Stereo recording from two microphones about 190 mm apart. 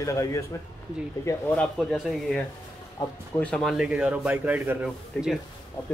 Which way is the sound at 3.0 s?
25° left (ahead or behind).